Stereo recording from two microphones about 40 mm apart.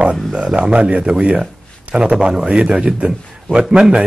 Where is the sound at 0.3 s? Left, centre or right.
Right.